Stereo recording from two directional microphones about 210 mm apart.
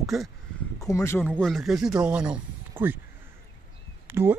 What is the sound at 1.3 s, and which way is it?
Speech, centre (ahead or behind).